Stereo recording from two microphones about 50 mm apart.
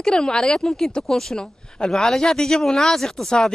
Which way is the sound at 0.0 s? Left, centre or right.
Centre.